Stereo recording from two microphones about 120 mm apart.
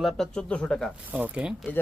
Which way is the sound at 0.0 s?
5° left (ahead or behind).